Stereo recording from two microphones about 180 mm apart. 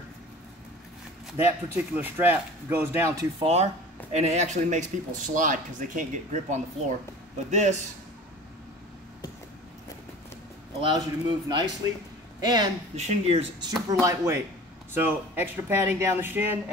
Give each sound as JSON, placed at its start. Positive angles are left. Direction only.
{"t": 1.3, "sound": "speech", "side_deg": -10}
{"t": 3.3, "sound": "speech", "side_deg": -35}
{"t": 10.8, "sound": "a man's voice", "side_deg": -25}
{"t": 12.9, "sound": "speech", "side_deg": -35}
{"t": 13.8, "sound": "speech", "side_deg": -15}